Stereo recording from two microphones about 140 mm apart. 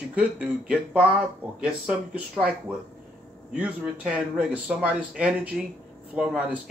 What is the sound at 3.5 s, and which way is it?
Speech, 5° right (ahead or behind).